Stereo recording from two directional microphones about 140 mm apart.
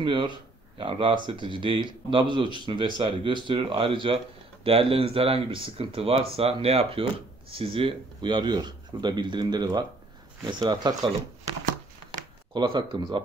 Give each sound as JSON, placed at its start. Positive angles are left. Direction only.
{"t": 0.0, "sound": "speech", "side_deg": -35}
{"t": 12.5, "sound": "speech", "side_deg": -35}